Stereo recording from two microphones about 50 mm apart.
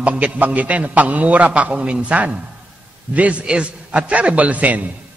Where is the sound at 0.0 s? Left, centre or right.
Right.